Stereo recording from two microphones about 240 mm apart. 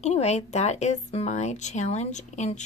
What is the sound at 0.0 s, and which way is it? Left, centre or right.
Speech, left.